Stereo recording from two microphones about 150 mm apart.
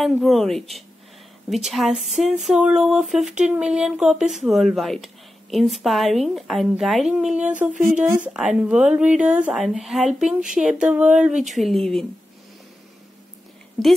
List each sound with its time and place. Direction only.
0.0 s speech: centre (ahead or behind)
7.7 s speech: 55° right (ahead or behind)
8.3 s speech: 5° right (ahead or behind)